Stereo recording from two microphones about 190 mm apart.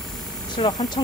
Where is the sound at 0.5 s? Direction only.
25° left (ahead or behind).